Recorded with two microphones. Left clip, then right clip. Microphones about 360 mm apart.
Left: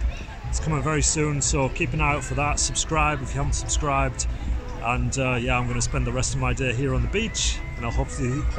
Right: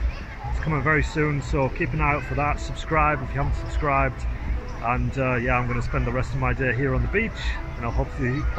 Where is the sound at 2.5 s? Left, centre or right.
Left.